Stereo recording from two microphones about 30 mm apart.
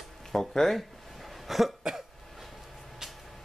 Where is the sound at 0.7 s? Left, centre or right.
Centre.